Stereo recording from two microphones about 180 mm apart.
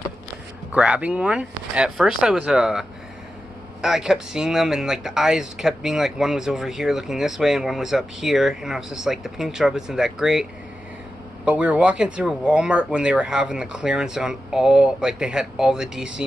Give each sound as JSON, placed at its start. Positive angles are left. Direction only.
{"t": 0.7, "sound": "speech", "side_deg": -5}
{"t": 11.4, "sound": "speech", "side_deg": -5}